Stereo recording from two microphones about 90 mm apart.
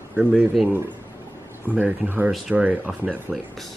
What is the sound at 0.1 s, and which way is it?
Speech, 10° right (ahead or behind).